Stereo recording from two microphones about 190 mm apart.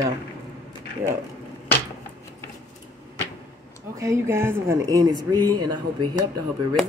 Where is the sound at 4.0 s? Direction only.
15° right (ahead or behind).